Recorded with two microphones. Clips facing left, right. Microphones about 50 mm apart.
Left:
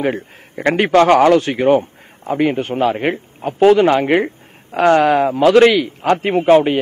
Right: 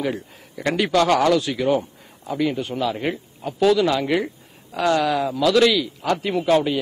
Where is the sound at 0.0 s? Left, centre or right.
Left.